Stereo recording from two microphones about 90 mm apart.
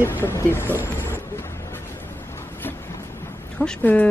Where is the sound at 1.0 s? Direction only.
25° left (ahead or behind).